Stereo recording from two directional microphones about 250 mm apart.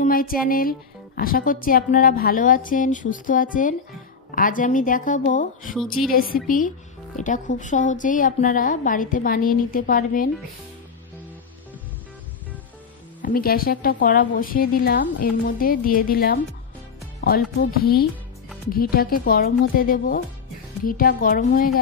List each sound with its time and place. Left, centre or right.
0.0 s speech: left
5.8 s a woman's voice: centre
6.1 s speech: left
13.2 s speech: left